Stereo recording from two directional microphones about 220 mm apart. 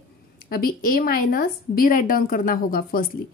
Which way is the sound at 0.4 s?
40° left (ahead or behind).